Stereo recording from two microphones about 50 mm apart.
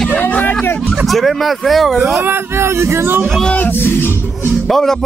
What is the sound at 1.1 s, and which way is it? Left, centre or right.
Speech, centre.